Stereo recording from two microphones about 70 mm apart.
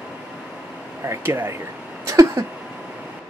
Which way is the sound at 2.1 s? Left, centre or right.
Right.